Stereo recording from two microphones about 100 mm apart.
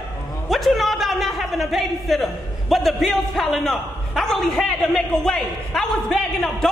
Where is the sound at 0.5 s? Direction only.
Centre (ahead or behind).